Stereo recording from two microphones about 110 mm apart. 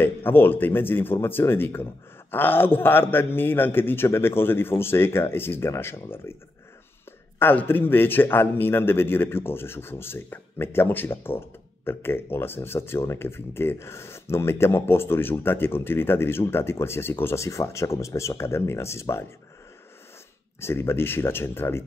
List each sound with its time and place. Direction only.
0.0 s a man's voice: 20° left (ahead or behind)
7.3 s a man's voice: 20° left (ahead or behind)
20.6 s a man's voice: 20° left (ahead or behind)